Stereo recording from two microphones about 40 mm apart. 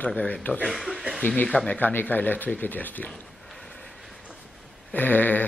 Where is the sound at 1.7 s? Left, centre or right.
Left.